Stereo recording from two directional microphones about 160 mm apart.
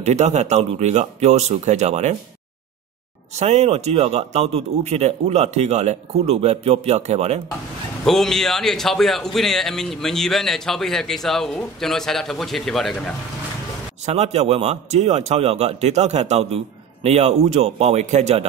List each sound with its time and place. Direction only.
0.0 s a man's voice: 45° right (ahead or behind)
3.3 s a man's voice: 45° right (ahead or behind)
8.0 s a man's voice: centre (ahead or behind)
14.0 s a man's voice: 45° right (ahead or behind)